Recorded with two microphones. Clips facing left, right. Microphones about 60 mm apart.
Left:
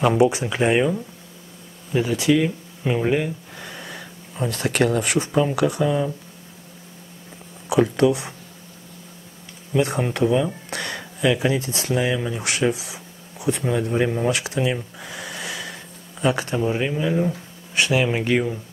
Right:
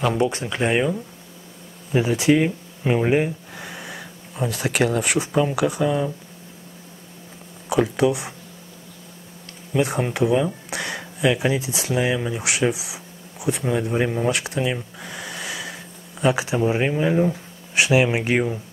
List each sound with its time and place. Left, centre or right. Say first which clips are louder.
0.0 s speech: left 4 dB; centre
1.9 s speech: right 1 dB; right
3.5 s speech: right 1 dB; centre
7.7 s speech: left 2 dB; centre
9.7 s speech: even; centre
16.6 s speech: right 3 dB; centre